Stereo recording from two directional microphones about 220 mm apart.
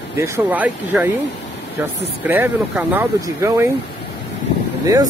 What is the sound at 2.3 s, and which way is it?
Speech, 5° right (ahead or behind).